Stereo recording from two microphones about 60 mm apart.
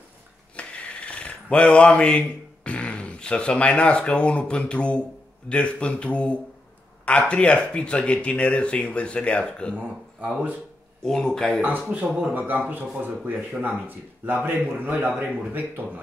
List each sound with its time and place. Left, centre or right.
0.6 s speech: left
9.8 s speech: right
11.0 s speech: centre
11.9 s speech: centre
12.4 s speech: right